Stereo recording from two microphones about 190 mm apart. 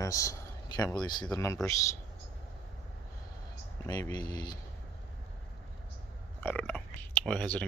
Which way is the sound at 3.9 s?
20° left (ahead or behind).